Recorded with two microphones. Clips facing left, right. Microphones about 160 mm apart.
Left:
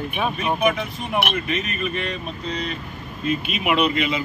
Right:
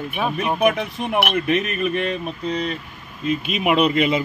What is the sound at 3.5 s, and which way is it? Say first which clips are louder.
Speech: right 4 dB; 40° right (ahead or behind).